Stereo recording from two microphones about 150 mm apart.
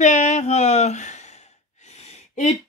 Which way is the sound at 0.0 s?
55° left (ahead or behind).